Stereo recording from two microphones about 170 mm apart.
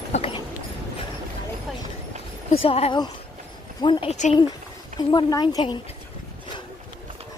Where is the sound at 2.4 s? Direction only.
35° left (ahead or behind).